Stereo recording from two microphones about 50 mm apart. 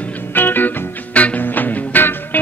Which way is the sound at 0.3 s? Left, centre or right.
Left.